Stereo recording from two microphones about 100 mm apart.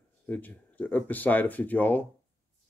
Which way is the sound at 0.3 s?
15° left (ahead or behind).